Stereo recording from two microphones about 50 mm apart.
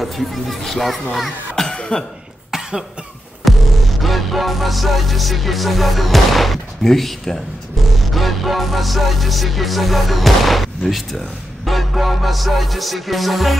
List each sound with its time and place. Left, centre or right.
0.0 s music: centre
1.7 s cough: centre
3.4 s music: centre